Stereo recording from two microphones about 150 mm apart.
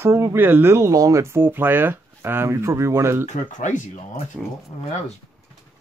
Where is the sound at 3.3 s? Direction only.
55° left (ahead or behind).